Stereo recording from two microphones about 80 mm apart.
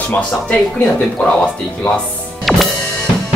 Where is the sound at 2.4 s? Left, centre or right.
Centre.